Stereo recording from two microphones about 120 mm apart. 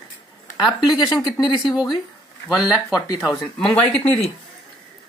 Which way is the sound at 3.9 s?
60° left (ahead or behind).